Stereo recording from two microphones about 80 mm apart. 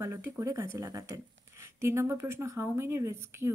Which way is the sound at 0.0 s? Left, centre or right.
Right.